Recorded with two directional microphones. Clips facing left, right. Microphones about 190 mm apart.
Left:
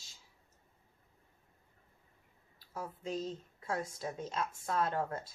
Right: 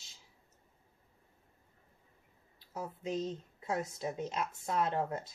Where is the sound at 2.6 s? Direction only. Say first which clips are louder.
Right 2 dB; 20° right (ahead or behind).